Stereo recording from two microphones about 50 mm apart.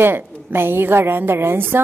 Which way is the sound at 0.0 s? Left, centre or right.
Right.